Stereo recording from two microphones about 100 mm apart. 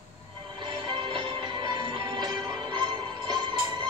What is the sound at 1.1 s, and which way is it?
Music, 55° right (ahead or behind).